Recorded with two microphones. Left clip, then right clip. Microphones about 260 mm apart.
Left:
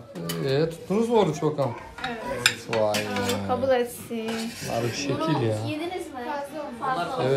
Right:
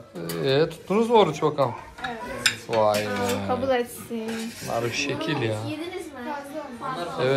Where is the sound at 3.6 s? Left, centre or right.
Right.